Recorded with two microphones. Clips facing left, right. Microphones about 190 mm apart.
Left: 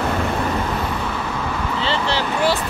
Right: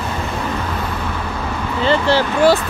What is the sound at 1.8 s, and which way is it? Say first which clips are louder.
Speech: right 8 dB; 50° right (ahead or behind).